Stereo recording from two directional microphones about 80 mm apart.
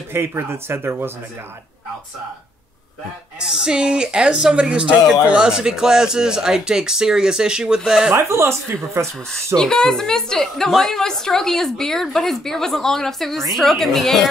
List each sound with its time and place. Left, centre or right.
0.1 s speech: right
3.3 s speech: centre
8.1 s speech: right
9.6 s a woman's voice: centre